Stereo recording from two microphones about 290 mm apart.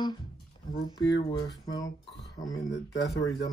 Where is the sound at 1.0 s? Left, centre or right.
Left.